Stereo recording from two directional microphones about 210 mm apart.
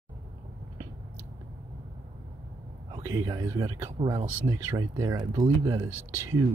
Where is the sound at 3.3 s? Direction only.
15° right (ahead or behind).